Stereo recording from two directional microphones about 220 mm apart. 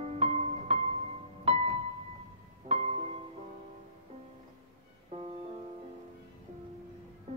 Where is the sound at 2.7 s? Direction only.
25° right (ahead or behind).